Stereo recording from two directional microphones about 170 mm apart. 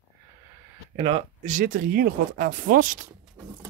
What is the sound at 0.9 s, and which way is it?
Speech, 35° right (ahead or behind).